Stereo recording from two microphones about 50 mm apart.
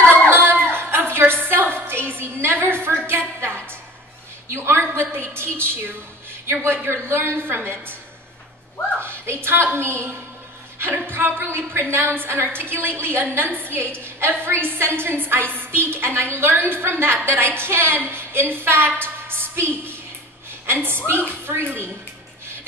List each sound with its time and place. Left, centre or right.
0.0 s music: left
0.3 s a sound: right
4.5 s a woman's voice: right
9.0 s a woman's voice: right